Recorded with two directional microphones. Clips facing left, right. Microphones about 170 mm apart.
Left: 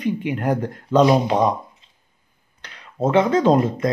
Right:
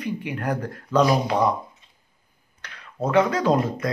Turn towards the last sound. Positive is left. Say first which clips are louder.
# left 5 dB
turn(degrees=25)  # may be behind; listen again after turning